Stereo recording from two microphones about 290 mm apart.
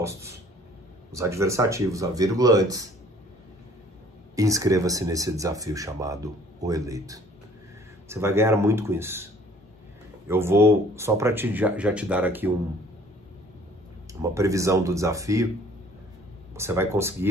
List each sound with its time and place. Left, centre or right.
1.1 s speech: centre
4.4 s speech: centre
14.2 s speech: centre
16.5 s speech: centre